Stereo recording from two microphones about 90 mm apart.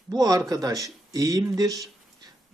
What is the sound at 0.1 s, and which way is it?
Speech, 45° right (ahead or behind).